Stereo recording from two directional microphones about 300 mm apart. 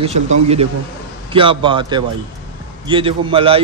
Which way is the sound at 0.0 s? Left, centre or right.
Right.